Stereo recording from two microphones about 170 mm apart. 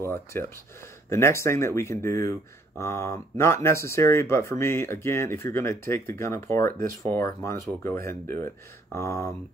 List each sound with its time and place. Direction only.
0.3 s speech: 15° left (ahead or behind)